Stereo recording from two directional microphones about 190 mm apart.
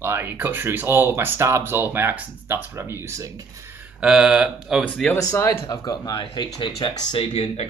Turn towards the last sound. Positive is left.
turn(degrees=30)  # may be behind; listen again after turning